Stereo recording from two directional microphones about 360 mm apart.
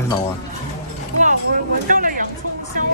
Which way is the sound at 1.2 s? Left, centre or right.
Right.